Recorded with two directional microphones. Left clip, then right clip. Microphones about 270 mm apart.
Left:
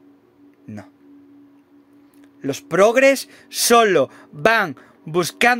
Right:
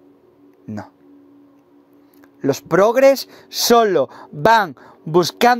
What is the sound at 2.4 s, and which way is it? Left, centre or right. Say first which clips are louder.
A man's voice: right 1 dB; centre.